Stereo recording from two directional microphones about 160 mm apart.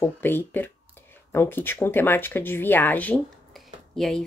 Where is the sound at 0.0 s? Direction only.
15° left (ahead or behind).